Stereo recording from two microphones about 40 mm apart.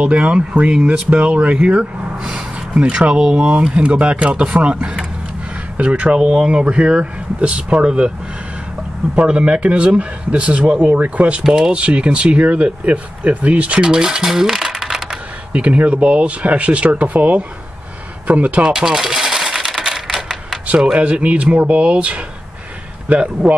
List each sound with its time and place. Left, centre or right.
0.0 s speech: right
1.1 s speech: right
6.1 s speech: right
9.1 s speech: right
11.5 s speech: right
15.0 s speech: right
18.7 s coin: centre
20.6 s speech: right